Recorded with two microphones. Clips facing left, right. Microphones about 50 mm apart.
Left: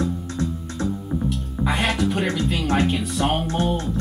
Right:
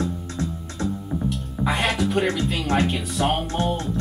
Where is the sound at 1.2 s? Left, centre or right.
Centre.